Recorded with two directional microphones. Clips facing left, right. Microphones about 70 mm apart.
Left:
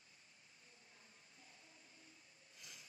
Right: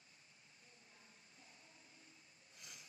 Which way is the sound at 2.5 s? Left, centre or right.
Centre.